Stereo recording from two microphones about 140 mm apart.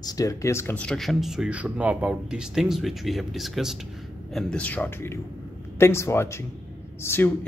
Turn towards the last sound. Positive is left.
turn(degrees=15)  # may be behind; listen again after turning